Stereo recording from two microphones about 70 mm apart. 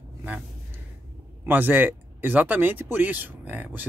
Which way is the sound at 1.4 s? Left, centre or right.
Right.